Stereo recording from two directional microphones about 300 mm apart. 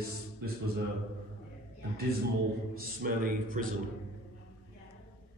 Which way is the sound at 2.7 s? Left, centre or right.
Right.